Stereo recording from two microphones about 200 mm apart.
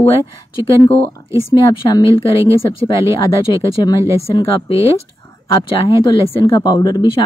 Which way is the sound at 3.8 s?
20° left (ahead or behind).